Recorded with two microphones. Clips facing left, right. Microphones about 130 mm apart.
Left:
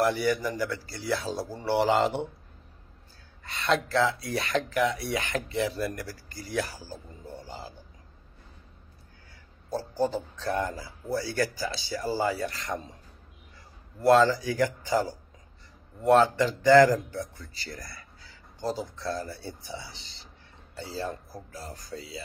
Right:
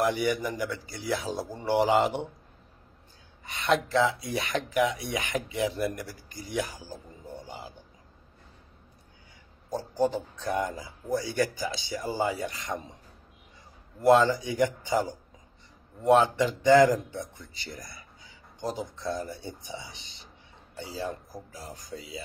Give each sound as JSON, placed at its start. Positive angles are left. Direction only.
{"t": 0.1, "sound": "speech", "side_deg": -20}
{"t": 3.4, "sound": "speech", "side_deg": -15}
{"t": 9.7, "sound": "speech", "side_deg": -15}
{"t": 14.0, "sound": "a man's voice", "side_deg": -15}